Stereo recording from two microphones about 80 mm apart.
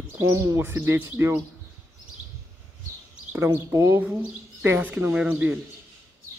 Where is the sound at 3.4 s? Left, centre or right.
Right.